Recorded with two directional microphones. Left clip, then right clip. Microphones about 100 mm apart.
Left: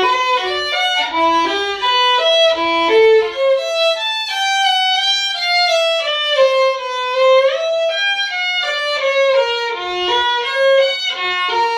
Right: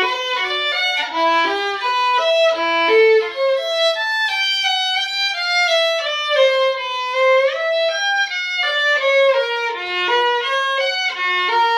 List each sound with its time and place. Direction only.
2.1 s violin: 15° right (ahead or behind)